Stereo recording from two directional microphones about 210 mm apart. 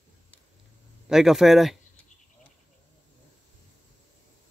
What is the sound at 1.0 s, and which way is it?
Speech, centre (ahead or behind).